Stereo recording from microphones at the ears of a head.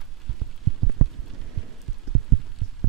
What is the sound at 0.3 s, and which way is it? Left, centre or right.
Heart sounds, right.